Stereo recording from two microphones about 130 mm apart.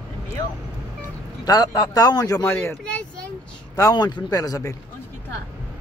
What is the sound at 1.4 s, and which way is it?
A man's voice, 30° left (ahead or behind).